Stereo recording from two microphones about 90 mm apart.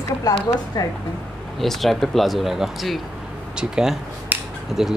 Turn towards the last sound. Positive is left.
turn(degrees=-5)  # may be behind; listen again after turning